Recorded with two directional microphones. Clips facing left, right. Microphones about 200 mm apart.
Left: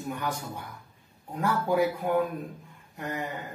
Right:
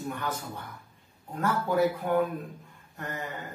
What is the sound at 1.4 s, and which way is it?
Speech, 15° left (ahead or behind).